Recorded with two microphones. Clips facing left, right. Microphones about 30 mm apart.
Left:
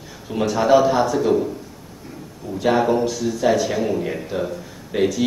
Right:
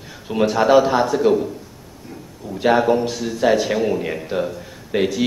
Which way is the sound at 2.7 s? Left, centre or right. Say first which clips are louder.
Right 2 dB; centre.